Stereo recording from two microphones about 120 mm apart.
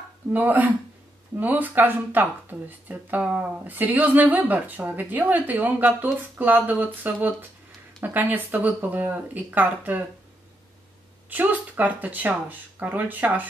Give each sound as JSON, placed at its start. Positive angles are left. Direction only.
{"t": 0.3, "sound": "speech", "side_deg": -15}
{"t": 11.2, "sound": "speech", "side_deg": -15}